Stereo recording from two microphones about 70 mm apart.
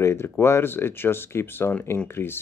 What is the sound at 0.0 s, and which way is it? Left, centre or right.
Speech, left.